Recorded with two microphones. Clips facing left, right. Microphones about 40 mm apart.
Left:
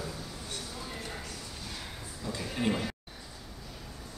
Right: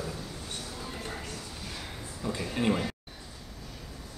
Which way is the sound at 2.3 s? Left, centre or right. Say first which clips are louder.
Right 3 dB; centre.